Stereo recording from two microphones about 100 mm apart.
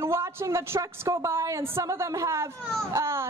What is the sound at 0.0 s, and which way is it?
A woman's voice, 25° right (ahead or behind).